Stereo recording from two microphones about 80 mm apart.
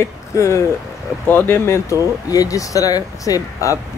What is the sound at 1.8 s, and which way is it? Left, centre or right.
Speech, left.